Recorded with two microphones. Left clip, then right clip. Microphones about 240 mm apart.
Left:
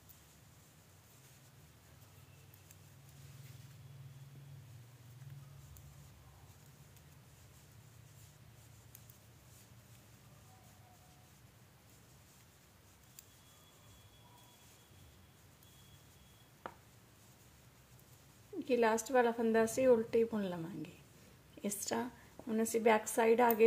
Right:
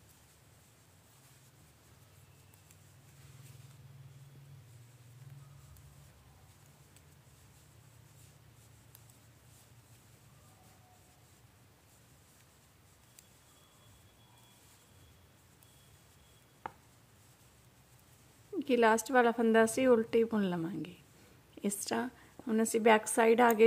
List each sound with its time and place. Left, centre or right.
18.7 s a woman's voice: right